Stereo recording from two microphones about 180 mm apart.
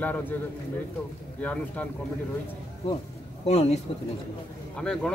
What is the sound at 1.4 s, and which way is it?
Speech, 10° left (ahead or behind).